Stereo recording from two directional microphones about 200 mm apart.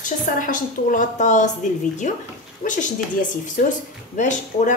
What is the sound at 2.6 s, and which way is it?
Speech, 40° left (ahead or behind).